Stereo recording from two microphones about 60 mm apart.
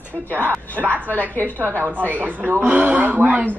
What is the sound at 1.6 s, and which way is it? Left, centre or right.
A woman's voice, right.